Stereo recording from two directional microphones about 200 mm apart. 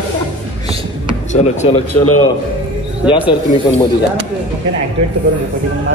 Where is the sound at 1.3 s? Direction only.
35° left (ahead or behind).